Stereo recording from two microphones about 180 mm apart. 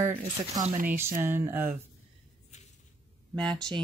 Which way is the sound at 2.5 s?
40° left (ahead or behind).